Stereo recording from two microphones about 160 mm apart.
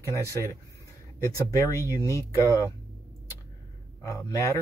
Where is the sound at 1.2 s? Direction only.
20° left (ahead or behind).